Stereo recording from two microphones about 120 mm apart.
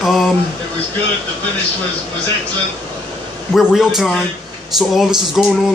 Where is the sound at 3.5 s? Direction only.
5° right (ahead or behind).